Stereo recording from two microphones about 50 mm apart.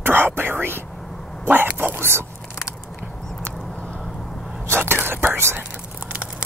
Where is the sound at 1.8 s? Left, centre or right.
Right.